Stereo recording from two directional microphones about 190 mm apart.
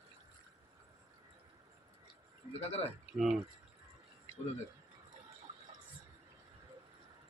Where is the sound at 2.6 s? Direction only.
35° left (ahead or behind).